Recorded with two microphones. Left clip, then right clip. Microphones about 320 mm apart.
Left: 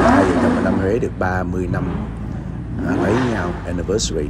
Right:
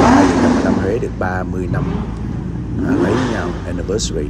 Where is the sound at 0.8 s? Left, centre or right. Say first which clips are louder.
Even; centre.